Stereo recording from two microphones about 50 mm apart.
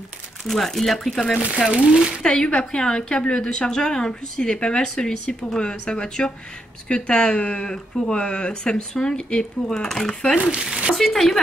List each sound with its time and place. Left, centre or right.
0.5 s speech: centre
2.2 s a woman's voice: centre
10.3 s a sound: right
11.0 s speech: centre